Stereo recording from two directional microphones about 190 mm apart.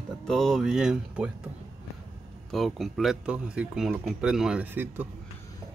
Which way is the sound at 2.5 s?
Centre (ahead or behind).